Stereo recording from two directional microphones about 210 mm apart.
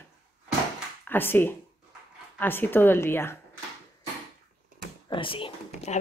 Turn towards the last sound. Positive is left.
turn(degrees=25)  # may be behind; listen again after turning